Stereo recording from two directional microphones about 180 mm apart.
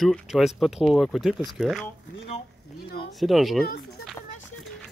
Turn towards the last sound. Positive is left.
turn(degrees=0)  # may be behind; listen again after turning